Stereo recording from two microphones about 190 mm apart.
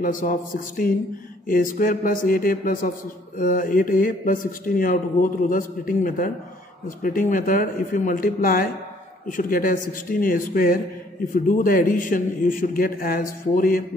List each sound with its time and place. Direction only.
0.0 s speech: 45° left (ahead or behind)